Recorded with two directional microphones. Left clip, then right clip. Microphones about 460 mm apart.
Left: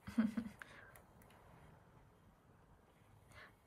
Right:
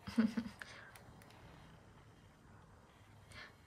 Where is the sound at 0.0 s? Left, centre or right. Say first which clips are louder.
Right 3 dB; centre.